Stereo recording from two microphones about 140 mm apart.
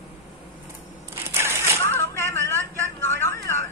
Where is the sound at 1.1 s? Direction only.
15° right (ahead or behind).